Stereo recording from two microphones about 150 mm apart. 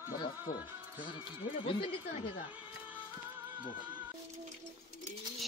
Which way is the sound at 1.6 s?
35° left (ahead or behind).